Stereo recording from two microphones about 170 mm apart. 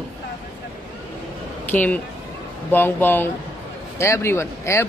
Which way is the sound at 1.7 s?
10° left (ahead or behind).